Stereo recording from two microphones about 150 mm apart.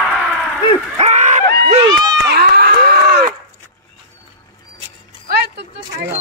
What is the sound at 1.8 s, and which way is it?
Run, 25° right (ahead or behind).